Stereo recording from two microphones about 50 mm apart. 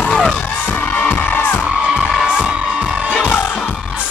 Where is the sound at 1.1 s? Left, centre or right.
Left.